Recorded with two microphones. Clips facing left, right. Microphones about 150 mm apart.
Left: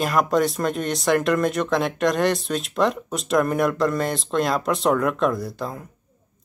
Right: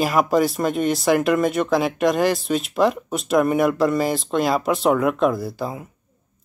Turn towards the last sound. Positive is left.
turn(degrees=-5)  # may be behind; listen again after turning